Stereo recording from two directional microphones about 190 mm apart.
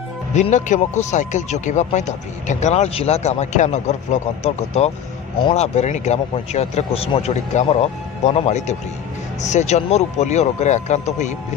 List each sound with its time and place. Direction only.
0.3 s speech: 40° left (ahead or behind)